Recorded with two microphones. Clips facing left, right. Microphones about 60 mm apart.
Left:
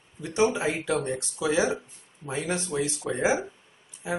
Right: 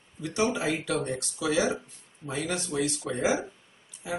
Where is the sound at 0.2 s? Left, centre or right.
Left.